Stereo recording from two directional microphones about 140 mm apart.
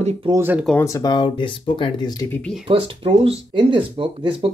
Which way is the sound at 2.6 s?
40° right (ahead or behind).